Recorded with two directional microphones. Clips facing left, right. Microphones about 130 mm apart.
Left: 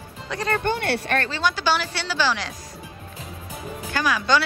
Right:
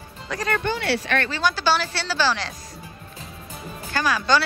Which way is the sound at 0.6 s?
50° left (ahead or behind).